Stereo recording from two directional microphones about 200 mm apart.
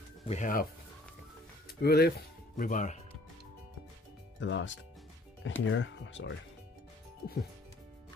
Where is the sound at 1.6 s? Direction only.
50° left (ahead or behind).